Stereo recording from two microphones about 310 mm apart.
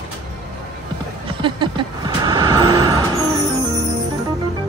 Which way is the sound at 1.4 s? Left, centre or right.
Centre.